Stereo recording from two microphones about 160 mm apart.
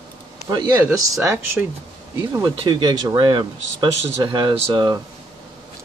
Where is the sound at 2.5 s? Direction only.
30° right (ahead or behind).